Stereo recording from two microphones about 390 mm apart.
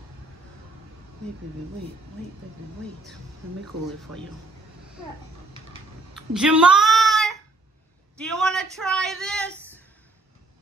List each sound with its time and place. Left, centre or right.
4.1 s a man's voice: right
6.1 s a sound: centre
8.2 s speech: centre